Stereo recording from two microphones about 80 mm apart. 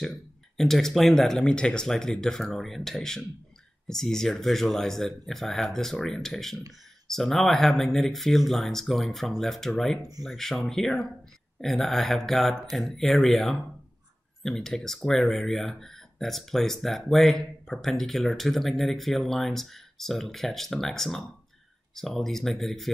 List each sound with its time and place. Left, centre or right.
0.6 s speech: centre